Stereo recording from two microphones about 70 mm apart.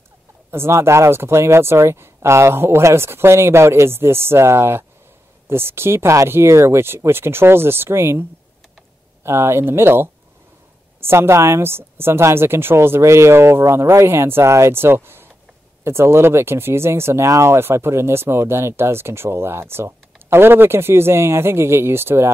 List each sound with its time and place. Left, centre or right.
0.5 s speech: right